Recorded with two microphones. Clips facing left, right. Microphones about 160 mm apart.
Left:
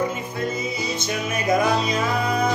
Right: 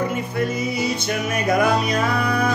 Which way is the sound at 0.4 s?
20° left (ahead or behind).